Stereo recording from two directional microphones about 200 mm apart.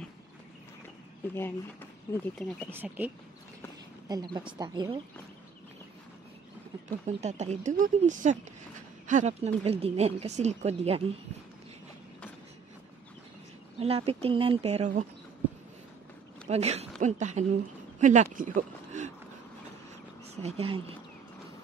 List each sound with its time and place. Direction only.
2.1 s speech: 5° left (ahead or behind)
2.7 s speech: 10° right (ahead or behind)
4.1 s speech: 20° right (ahead or behind)
6.9 s speech: 35° right (ahead or behind)
13.7 s speech: 30° right (ahead or behind)
16.4 s speech: 30° right (ahead or behind)
20.4 s speech: 30° right (ahead or behind)